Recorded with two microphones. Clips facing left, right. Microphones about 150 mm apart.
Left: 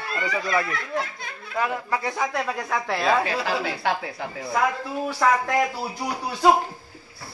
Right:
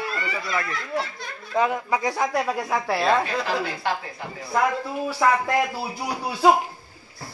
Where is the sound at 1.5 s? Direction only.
15° right (ahead or behind); by 3.7 s 5° left (ahead or behind).